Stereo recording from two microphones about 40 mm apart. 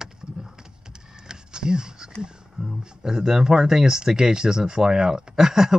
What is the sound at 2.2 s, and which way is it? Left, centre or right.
Speech, centre.